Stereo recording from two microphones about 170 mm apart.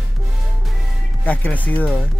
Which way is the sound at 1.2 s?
10° left (ahead or behind).